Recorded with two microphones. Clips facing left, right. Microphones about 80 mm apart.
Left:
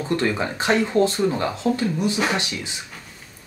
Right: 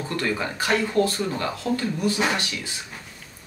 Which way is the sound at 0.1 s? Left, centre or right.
Left.